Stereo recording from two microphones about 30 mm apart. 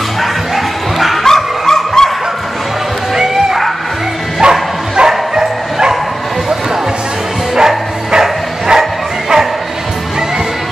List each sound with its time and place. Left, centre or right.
0.9 s bow-wow: centre
1.2 s bow-wow: centre
3.2 s music: centre
4.4 s bow-wow: right
7.5 s music: centre